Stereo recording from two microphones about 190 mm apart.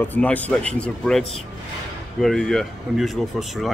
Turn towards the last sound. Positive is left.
turn(degrees=0)  # may be behind; listen again after turning